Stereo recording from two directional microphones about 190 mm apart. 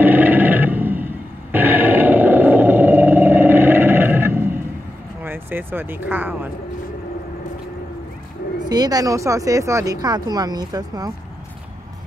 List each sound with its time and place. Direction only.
0.0 s roar: 10° right (ahead or behind)
5.2 s speech: 10° right (ahead or behind)
8.6 s speech: 20° right (ahead or behind)